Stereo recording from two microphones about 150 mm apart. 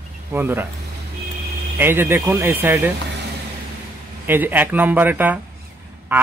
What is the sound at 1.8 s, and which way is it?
Speech, 15° right (ahead or behind).